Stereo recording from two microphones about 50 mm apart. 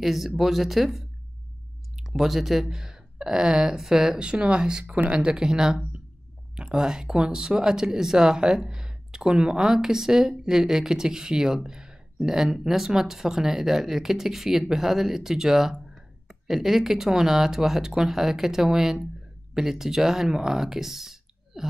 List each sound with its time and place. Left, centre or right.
0.0 s speech: centre
4.3 s speech: right; by 21.6 s centre